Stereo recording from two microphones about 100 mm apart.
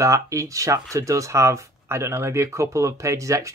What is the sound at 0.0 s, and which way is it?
Speech, 30° right (ahead or behind).